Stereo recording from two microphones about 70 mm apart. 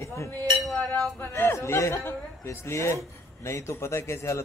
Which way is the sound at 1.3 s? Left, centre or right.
Left.